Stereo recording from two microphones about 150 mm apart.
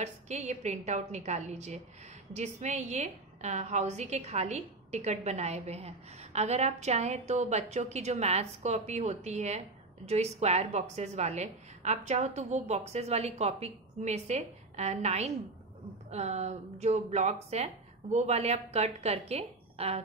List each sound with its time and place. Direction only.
0.0 s a woman's voice: 50° right (ahead or behind)